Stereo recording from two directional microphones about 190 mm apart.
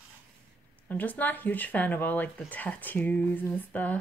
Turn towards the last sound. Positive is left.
turn(degrees=10)  # may be behind; listen again after turning